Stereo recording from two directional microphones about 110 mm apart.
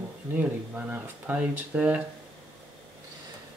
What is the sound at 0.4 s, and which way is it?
Speech, 15° right (ahead or behind).